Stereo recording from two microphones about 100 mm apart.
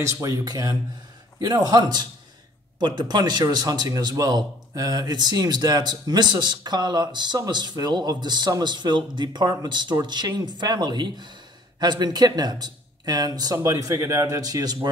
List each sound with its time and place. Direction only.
0.0 s a man's voice: 35° right (ahead or behind)
13.6 s speech: 35° right (ahead or behind)